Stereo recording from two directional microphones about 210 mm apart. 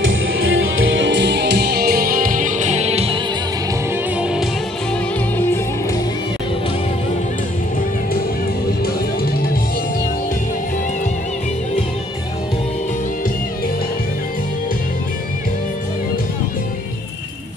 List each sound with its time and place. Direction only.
0.0 s music: 70° right (ahead or behind); by 3.2 s 30° right (ahead or behind)
4.2 s music: 5° right (ahead or behind)